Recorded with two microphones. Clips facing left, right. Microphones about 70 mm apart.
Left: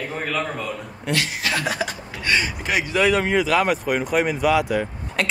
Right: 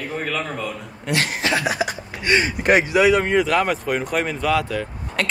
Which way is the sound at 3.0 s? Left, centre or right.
Centre.